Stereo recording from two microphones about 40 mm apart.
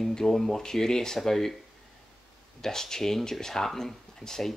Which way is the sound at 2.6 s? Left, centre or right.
Centre.